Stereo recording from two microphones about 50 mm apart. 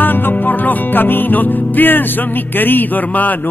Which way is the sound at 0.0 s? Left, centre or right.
Left.